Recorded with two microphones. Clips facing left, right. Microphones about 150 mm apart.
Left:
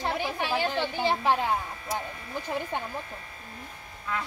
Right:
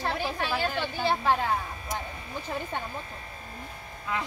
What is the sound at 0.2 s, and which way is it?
A woman's voice, 15° left (ahead or behind).